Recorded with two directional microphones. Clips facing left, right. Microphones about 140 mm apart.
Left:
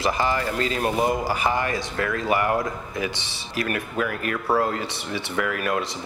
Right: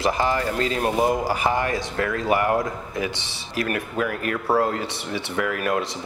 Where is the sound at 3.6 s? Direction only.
35° right (ahead or behind).